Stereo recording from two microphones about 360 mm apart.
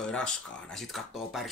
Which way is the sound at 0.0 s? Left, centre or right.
Centre.